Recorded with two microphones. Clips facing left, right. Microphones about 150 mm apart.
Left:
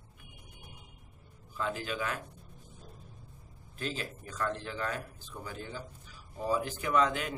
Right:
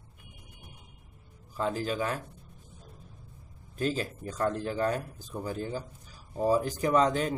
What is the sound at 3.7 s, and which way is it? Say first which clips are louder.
A man's voice: right 7 dB; 40° right (ahead or behind).